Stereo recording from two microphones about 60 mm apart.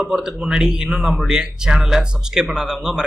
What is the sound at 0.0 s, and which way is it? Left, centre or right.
Speech, centre.